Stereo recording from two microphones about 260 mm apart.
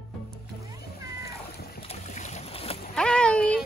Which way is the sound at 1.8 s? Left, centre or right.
Left.